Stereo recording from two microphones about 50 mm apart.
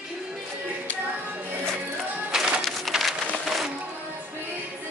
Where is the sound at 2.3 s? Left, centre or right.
Centre.